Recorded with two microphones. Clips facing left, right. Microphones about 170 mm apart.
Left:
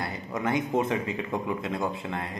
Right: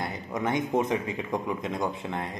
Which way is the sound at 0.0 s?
20° right (ahead or behind).